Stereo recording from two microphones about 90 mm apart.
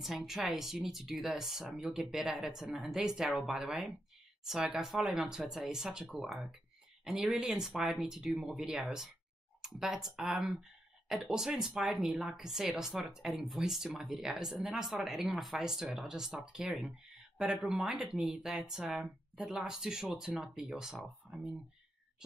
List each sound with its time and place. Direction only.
0.0 s speech: 5° right (ahead or behind)